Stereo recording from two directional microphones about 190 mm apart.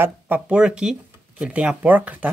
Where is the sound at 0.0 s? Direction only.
10° right (ahead or behind).